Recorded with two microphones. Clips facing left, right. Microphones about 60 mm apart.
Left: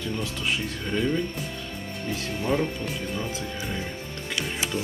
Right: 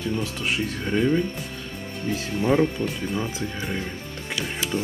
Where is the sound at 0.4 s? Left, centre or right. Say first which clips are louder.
Right 2 dB; centre.